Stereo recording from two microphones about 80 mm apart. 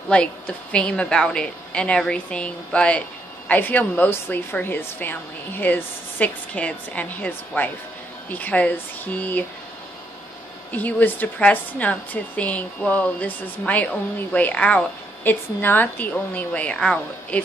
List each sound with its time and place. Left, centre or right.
0.1 s a woman's voice: centre
10.7 s a woman's voice: left